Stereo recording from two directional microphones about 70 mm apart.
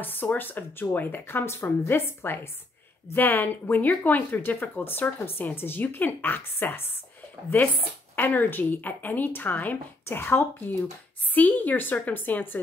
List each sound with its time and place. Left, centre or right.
0.0 s speech: left